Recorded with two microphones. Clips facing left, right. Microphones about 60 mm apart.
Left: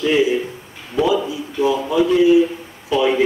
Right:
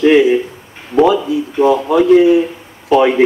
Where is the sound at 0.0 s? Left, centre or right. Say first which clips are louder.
Right 7 dB; right.